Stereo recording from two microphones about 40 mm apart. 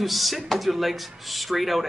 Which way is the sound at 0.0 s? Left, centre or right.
Centre.